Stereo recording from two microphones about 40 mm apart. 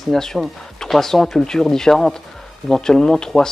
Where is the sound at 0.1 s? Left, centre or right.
Centre.